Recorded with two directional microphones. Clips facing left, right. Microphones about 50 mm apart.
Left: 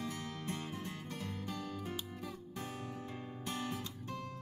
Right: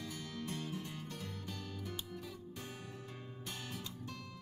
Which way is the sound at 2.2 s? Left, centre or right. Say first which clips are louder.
Left 3 dB; left.